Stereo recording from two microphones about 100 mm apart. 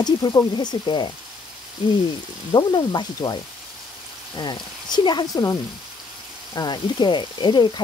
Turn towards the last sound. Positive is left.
turn(degrees=50)  # may be behind; listen again after turning